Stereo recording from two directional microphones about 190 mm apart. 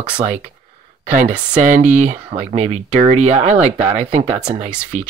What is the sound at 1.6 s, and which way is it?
Speech, 40° right (ahead or behind).